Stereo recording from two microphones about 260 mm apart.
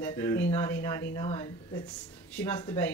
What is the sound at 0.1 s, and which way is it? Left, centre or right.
Speech, centre.